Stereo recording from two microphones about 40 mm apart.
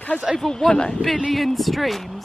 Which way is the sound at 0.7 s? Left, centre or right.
Left.